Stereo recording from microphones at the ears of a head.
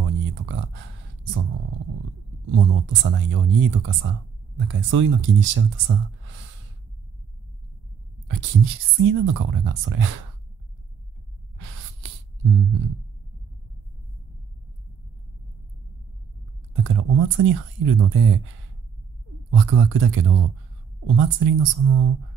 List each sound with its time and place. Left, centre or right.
0.0 s speech: right
8.3 s speech: right
11.5 s a sound: right
16.7 s speech: right